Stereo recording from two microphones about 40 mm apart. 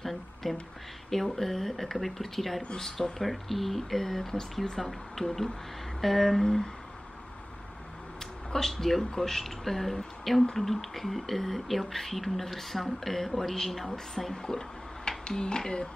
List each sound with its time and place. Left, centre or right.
0.0 s a sound: centre
1.1 s speech: centre
8.5 s speech: centre